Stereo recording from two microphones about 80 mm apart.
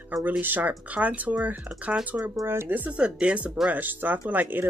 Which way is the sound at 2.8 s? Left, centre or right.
Centre.